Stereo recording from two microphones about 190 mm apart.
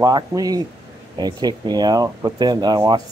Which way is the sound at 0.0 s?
20° right (ahead or behind).